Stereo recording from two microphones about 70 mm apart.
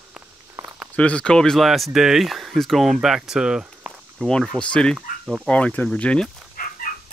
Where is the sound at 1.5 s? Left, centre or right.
Centre.